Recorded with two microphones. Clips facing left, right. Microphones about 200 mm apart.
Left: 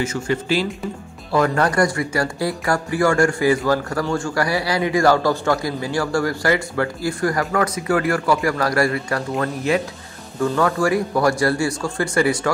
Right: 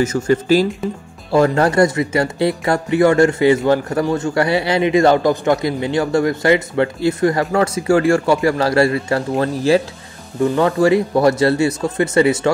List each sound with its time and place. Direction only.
0.0 s speech: 40° right (ahead or behind)
1.3 s speech: 25° right (ahead or behind)
10.4 s speech: 20° right (ahead or behind)